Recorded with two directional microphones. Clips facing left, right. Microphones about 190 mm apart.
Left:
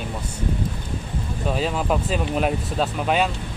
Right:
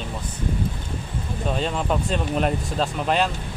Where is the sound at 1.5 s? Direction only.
5° left (ahead or behind).